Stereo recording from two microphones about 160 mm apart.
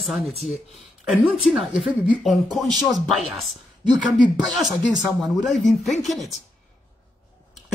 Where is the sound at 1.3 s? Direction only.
Centre (ahead or behind).